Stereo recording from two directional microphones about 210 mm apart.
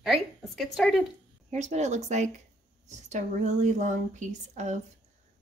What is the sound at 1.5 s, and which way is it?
Speech, 35° right (ahead or behind).